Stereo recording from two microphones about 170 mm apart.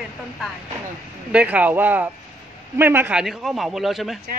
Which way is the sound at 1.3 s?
5° right (ahead or behind).